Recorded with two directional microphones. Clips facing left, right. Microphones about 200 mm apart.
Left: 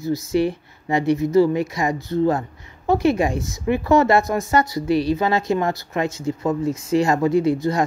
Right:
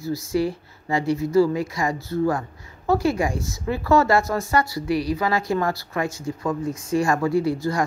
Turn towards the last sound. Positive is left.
turn(degrees=20)  # may be behind; listen again after turning